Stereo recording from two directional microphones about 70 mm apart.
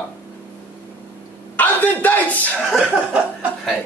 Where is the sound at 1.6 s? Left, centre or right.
Left.